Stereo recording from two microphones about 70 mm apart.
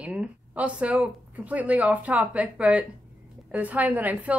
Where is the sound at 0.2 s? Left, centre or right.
Right.